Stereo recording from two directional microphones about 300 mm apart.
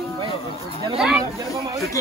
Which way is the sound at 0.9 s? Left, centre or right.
Centre.